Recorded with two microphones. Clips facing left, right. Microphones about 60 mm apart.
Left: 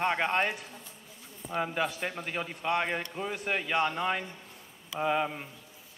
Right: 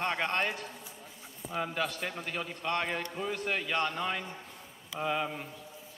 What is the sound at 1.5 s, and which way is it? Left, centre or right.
A man's voice, centre.